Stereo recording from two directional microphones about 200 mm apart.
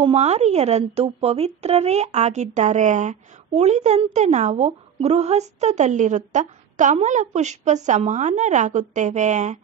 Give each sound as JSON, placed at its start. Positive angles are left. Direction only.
{"t": 0.0, "sound": "a woman's voice", "side_deg": -30}